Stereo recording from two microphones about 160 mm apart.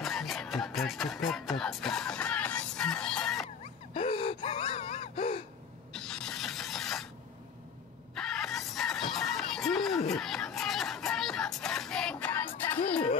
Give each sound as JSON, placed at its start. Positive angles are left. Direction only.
{"t": 0.0, "sound": "music", "side_deg": 0}
{"t": 3.9, "sound": "gasp", "side_deg": 35}
{"t": 5.9, "sound": "a sound", "side_deg": 5}
{"t": 8.1, "sound": "music", "side_deg": 5}